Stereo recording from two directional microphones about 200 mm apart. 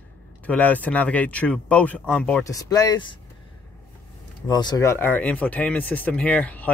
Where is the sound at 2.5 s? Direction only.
20° left (ahead or behind).